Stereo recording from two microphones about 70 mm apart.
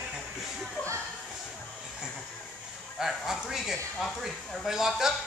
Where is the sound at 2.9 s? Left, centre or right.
Centre.